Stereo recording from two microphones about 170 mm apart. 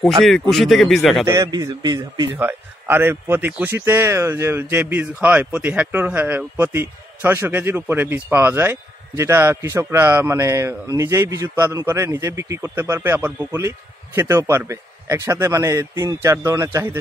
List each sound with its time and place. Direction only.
0.2 s speech: centre (ahead or behind)
1.2 s a man's voice: 20° right (ahead or behind)
2.3 s speech: 10° right (ahead or behind)